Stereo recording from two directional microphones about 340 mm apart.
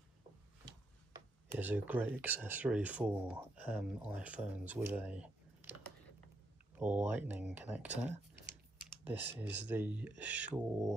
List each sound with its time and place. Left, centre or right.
1.1 s speech: centre
8.1 s typing: right
9.0 s speech: centre